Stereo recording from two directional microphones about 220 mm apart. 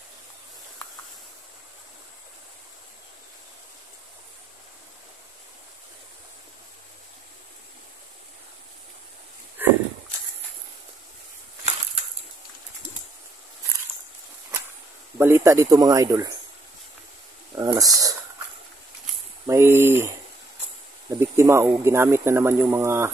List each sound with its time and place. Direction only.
9.6 s a sound: 10° right (ahead or behind)
15.1 s speech: 10° right (ahead or behind)
17.6 s speech: 15° right (ahead or behind)
19.4 s speech: 10° right (ahead or behind)
21.2 s speech: 10° right (ahead or behind)